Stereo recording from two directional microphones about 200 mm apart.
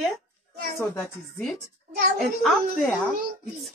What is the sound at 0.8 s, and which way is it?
A woman's voice, 5° left (ahead or behind).